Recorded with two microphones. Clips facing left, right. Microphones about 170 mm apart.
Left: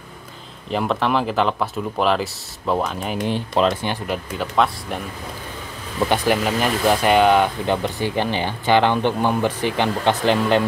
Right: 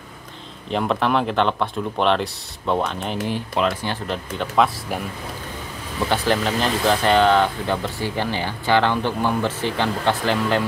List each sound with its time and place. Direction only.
0.7 s speech: centre (ahead or behind)
3.3 s speech: 25° left (ahead or behind); by 5.0 s centre (ahead or behind)
6.0 s speech: 15° left (ahead or behind)